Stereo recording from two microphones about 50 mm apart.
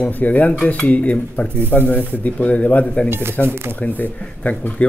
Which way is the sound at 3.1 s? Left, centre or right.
Right.